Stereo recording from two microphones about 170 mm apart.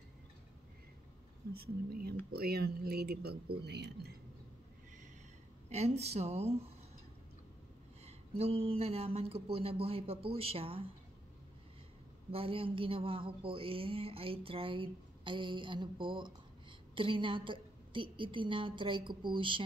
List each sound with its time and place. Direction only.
1.5 s speech: 60° right (ahead or behind)
5.7 s speech: 40° right (ahead or behind)
8.0 s speech: 35° right (ahead or behind)
12.3 s a woman's voice: 35° right (ahead or behind)